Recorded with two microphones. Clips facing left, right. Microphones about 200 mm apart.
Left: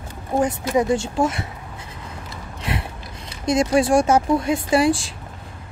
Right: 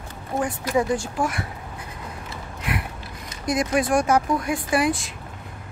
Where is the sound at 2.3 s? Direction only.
30° left (ahead or behind).